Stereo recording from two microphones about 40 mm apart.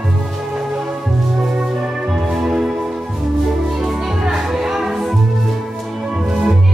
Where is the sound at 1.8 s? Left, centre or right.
Centre.